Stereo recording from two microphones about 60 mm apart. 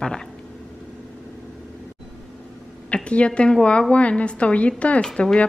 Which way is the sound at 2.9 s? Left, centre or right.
Centre.